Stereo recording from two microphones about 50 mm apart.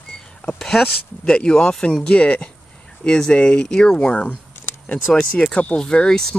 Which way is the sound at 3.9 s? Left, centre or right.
Left.